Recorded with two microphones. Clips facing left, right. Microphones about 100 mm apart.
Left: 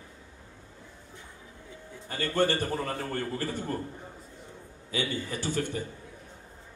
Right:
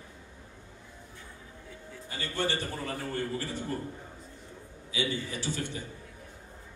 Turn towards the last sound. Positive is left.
turn(degrees=50)  # may be behind; listen again after turning